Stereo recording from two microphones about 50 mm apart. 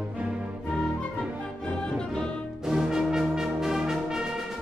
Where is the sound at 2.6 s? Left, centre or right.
Centre.